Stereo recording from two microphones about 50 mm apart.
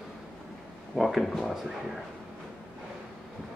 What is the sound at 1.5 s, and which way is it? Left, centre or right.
Speech, centre.